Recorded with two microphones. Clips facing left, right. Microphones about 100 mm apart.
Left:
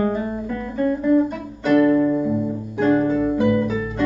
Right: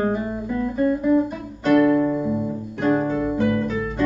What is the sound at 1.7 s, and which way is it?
Music, 5° right (ahead or behind).